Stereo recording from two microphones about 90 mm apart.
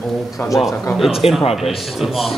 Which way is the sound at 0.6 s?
Centre (ahead or behind).